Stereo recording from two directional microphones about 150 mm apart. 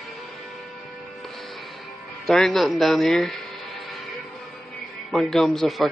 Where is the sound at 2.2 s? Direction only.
Centre (ahead or behind).